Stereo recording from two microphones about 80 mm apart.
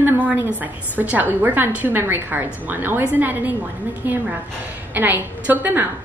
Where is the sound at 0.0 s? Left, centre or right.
Right.